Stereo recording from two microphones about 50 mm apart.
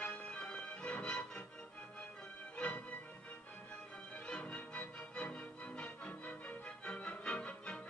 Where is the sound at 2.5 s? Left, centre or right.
Left.